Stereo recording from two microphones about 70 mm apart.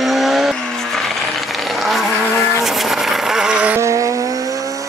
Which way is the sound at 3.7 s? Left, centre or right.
Right.